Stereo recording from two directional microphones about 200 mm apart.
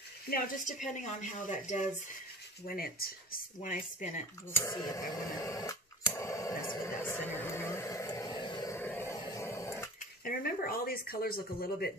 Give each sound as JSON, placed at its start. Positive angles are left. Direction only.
{"t": 0.3, "sound": "speech", "side_deg": 40}
{"t": 4.5, "sound": "a sound", "side_deg": 15}
{"t": 10.2, "sound": "speech", "side_deg": 45}